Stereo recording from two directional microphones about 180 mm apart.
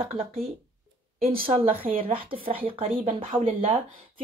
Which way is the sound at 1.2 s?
55° right (ahead or behind).